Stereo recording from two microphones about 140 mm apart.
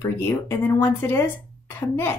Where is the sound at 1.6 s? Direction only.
15° left (ahead or behind).